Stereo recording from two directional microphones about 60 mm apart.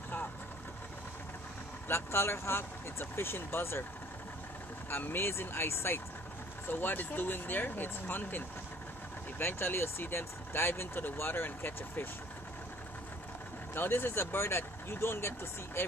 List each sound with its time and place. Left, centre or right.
1.9 s speech: left
4.8 s speech: left
6.7 s speech: left
13.7 s speech: left